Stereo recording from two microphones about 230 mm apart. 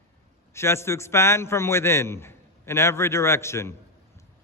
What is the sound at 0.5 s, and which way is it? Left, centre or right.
A man's voice, centre.